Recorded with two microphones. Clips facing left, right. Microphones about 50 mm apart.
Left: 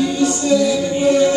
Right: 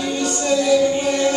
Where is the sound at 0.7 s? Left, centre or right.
Centre.